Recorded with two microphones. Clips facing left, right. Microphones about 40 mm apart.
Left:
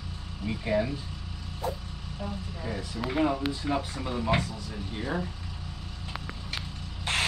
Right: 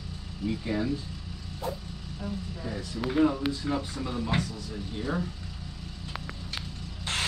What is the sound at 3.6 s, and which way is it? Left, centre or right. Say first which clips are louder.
Speech: left 1 dB; left.